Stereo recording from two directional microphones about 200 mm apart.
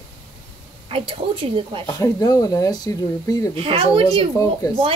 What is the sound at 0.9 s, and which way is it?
Speech, 25° right (ahead or behind).